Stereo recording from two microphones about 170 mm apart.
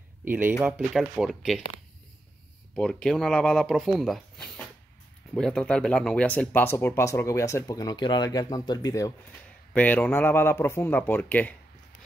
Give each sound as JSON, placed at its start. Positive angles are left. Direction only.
{"t": 0.2, "sound": "speech", "side_deg": -10}
{"t": 2.7, "sound": "speech", "side_deg": 5}
{"t": 9.8, "sound": "speech", "side_deg": 10}